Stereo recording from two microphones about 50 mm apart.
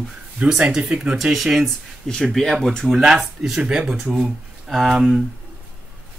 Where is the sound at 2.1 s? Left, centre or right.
Centre.